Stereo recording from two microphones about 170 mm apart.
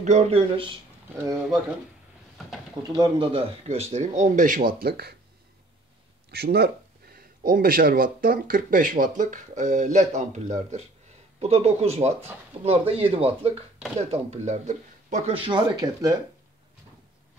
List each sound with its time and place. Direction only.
0.0 s speech: 40° right (ahead or behind)
2.9 s speech: 30° right (ahead or behind); by 5.1 s 70° right (ahead or behind)
6.3 s speech: 65° right (ahead or behind); by 16.2 s 20° right (ahead or behind)